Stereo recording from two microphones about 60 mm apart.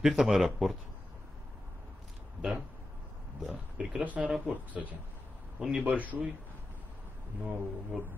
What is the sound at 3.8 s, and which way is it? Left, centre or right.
Speech, centre.